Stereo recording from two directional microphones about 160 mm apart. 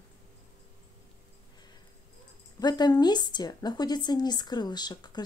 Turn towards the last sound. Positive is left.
turn(degrees=25)  # may be behind; listen again after turning